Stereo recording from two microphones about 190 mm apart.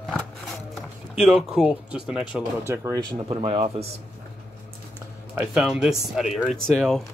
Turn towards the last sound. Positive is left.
turn(degrees=5)  # may be behind; listen again after turning